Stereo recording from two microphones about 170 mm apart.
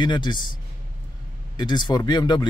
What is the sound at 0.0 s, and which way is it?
Speech, 25° left (ahead or behind).